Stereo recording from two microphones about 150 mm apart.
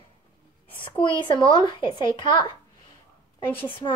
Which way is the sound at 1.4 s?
30° left (ahead or behind).